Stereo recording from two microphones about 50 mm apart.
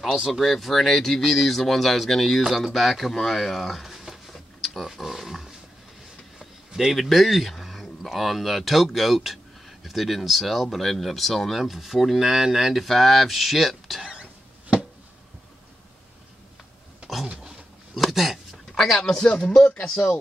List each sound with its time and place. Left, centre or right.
0.3 s speech: centre
6.7 s speech: centre
12.8 s speech: centre
17.4 s a sound: centre
18.0 s speech: centre
20.0 s speech: left